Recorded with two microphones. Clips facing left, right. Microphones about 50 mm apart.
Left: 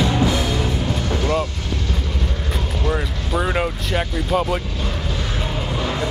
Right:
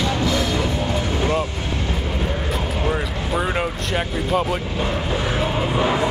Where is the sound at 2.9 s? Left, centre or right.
Centre.